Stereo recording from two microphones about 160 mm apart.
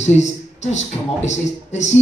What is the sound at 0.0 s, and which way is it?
A man's voice, 45° left (ahead or behind).